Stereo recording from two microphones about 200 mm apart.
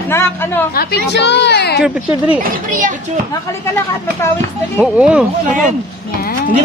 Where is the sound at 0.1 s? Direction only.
10° left (ahead or behind).